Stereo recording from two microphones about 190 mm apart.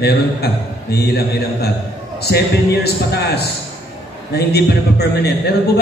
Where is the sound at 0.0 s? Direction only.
55° left (ahead or behind).